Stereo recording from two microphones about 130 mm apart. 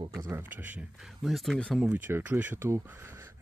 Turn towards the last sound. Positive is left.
turn(degrees=-20)  # may be behind; listen again after turning